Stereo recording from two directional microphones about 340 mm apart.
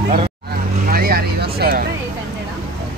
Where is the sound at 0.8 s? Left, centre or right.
Right.